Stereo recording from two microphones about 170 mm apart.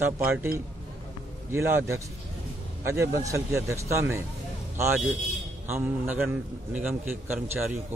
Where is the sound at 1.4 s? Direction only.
15° right (ahead or behind).